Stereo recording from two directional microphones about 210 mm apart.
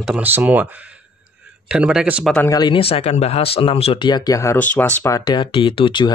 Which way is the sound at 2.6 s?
25° left (ahead or behind).